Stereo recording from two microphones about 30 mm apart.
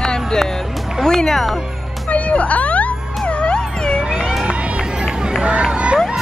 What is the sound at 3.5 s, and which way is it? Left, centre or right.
Cat, left.